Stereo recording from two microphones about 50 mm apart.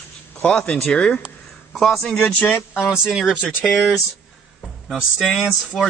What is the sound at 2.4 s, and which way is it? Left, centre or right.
Speech, left.